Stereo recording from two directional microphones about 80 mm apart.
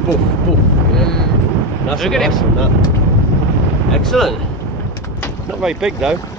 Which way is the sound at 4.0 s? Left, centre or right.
Centre.